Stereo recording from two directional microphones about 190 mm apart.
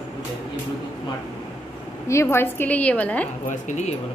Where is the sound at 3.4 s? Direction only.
40° left (ahead or behind).